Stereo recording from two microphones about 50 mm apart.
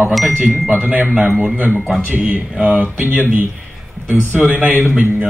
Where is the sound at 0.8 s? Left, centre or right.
Right.